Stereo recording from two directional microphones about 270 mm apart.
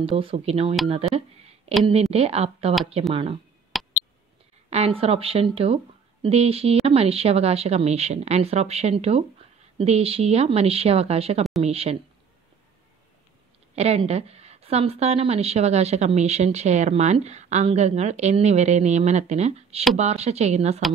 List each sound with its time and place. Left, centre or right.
0.0 s a woman's voice: centre
3.7 s a sound: centre
4.6 s a woman's voice: right
13.7 s a woman's voice: right